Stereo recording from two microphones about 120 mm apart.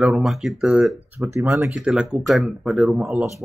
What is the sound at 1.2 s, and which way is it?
Speech, 15° right (ahead or behind).